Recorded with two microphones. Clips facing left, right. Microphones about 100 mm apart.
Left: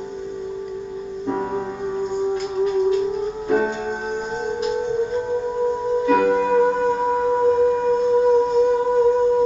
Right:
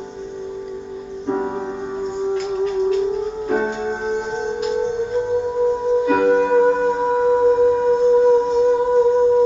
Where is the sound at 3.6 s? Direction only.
30° right (ahead or behind).